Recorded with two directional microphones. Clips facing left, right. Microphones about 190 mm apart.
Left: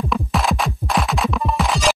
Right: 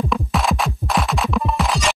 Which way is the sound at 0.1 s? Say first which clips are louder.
Even; centre (ahead or behind).